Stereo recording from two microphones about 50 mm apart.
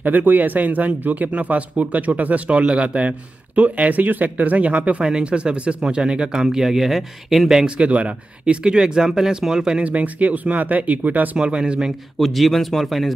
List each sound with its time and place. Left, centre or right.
0.0 s speech: right; by 7.6 s centre
7.6 s speech: right
9.8 s speech: right
11.3 s speech: centre
12.2 s speech: centre